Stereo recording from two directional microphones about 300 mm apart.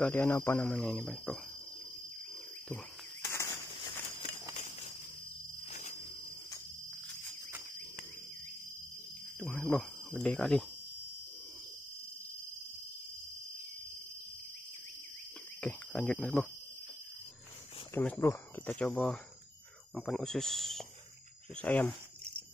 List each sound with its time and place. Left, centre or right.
0.0 s speech: centre
3.3 s a sound: centre
9.4 s cricket: centre
15.6 s speech: centre
17.9 s speech: centre